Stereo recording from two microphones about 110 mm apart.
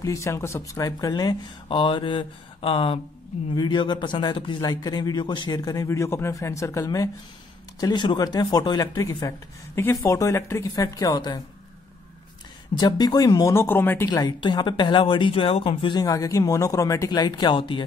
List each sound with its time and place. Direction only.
0.0 s speech: 25° left (ahead or behind)
1.7 s a woman's voice: 50° left (ahead or behind)
4.6 s speech: 35° left (ahead or behind)
7.8 s speech: 45° left (ahead or behind)
12.7 s speech: 40° left (ahead or behind); by 14.0 s 20° left (ahead or behind)
14.0 s a woman's voice: 40° left (ahead or behind); by 16.0 s 55° left (ahead or behind)
16.0 s speech: 30° left (ahead or behind); by 17.8 s 50° left (ahead or behind)